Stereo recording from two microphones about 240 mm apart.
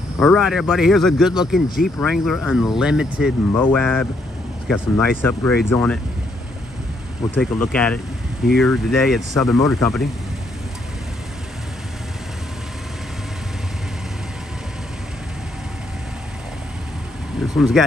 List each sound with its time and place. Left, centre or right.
0.2 s speech: centre
7.3 s speech: centre
17.4 s speech: centre